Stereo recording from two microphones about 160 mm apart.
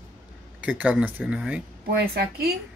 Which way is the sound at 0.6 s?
10° right (ahead or behind).